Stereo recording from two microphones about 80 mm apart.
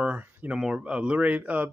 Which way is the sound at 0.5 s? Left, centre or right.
Centre.